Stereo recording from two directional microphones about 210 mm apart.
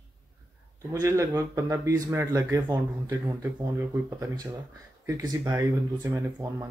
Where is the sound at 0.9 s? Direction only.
15° right (ahead or behind).